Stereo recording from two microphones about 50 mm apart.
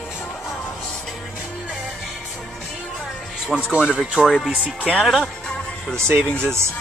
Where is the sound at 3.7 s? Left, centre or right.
Centre.